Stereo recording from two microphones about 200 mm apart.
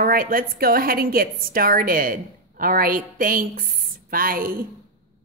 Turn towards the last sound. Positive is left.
turn(degrees=-45)  # may be behind; listen again after turning